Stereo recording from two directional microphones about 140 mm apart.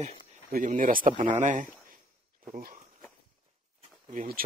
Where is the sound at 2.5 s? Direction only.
90° right.